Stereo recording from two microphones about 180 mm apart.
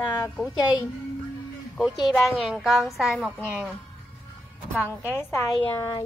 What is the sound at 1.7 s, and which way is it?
A woman's voice, centre (ahead or behind).